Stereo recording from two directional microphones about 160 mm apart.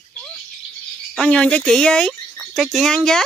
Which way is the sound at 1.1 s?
5° left (ahead or behind).